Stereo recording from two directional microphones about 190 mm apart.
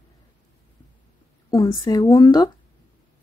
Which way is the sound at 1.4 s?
20° left (ahead or behind).